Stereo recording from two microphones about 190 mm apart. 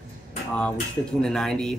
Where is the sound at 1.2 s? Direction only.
5° left (ahead or behind).